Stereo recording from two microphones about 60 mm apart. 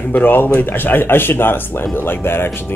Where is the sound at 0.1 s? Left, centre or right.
Left.